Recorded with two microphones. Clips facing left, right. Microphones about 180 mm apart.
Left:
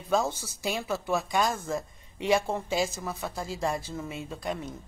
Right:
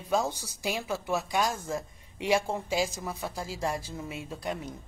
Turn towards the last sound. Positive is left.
turn(degrees=-10)  # may be behind; listen again after turning